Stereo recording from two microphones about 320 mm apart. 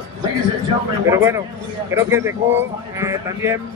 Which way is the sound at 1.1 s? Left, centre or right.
Centre.